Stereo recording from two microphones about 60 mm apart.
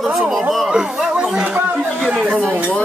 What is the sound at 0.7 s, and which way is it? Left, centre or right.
Speech, centre.